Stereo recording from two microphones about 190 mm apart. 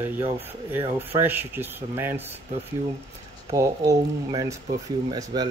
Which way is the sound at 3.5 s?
15° right (ahead or behind).